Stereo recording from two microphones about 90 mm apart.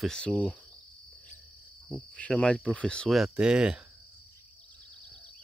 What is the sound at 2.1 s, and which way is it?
Speech, 15° left (ahead or behind).